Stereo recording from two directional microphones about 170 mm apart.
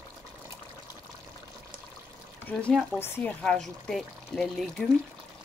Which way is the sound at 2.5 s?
5° left (ahead or behind).